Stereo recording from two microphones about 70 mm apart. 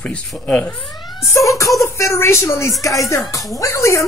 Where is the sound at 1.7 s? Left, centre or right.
Left.